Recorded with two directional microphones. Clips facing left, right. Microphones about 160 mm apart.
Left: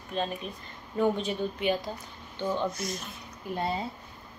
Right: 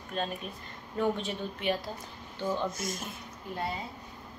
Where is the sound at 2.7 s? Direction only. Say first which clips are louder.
Left 1 dB; 50° right (ahead or behind).